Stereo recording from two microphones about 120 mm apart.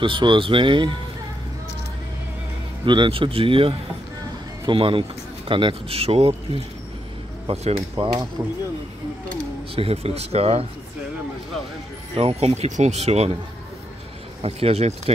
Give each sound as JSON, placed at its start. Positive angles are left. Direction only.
{"t": 0.0, "sound": "speech", "side_deg": -45}
{"t": 2.8, "sound": "speech", "side_deg": -40}
{"t": 8.4, "sound": "speech", "side_deg": -25}
{"t": 9.8, "sound": "speech", "side_deg": -55}
{"t": 12.2, "sound": "speech", "side_deg": -55}
{"t": 14.4, "sound": "speech", "side_deg": -55}